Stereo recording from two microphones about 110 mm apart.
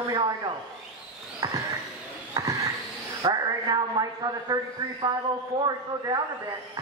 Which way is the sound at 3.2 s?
40° right (ahead or behind).